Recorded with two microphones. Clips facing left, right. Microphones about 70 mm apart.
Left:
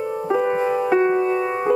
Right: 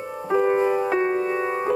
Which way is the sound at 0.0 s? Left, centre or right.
Centre.